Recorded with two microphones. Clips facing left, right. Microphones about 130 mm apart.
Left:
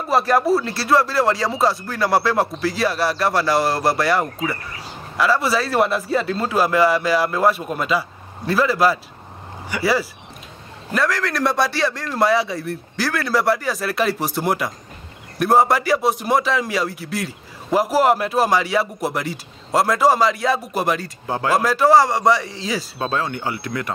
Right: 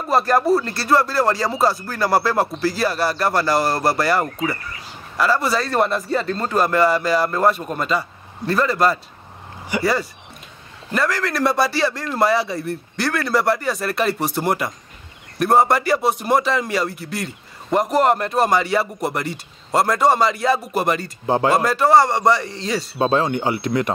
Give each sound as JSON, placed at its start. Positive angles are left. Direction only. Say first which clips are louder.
{"t": 0.0, "sound": "a man's voice", "louder": "even", "side_deg": 0}
{"t": 9.7, "sound": "speech", "louder": "right 2 dB", "side_deg": -15}
{"t": 10.9, "sound": "a man's voice", "louder": "even", "side_deg": 0}
{"t": 22.9, "sound": "speech", "louder": "right 9 dB", "side_deg": -25}